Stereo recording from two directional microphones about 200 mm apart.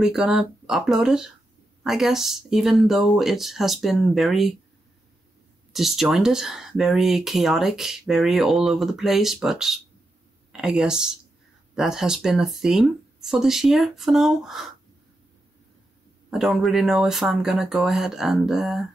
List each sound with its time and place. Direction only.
0.0 s speech: 5° right (ahead or behind)
5.7 s speech: centre (ahead or behind)
16.3 s speech: centre (ahead or behind)